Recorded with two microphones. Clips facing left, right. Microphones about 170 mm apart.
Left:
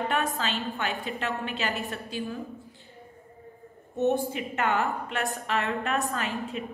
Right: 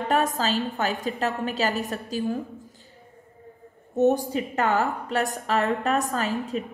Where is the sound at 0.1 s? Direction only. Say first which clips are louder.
Right 5 dB; 40° right (ahead or behind).